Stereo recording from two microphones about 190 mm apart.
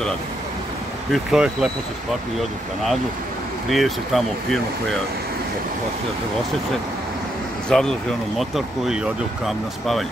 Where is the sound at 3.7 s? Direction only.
Centre (ahead or behind).